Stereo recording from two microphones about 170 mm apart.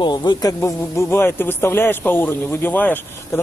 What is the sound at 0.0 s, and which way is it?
Speech, 25° left (ahead or behind).